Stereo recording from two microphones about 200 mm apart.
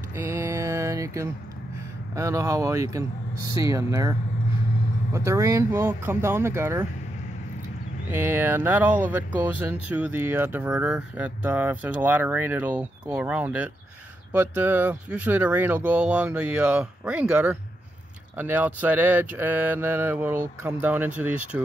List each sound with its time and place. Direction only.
0.1 s mantra: 15° right (ahead or behind)
2.1 s speech: 15° right (ahead or behind)
8.1 s speech: 10° right (ahead or behind)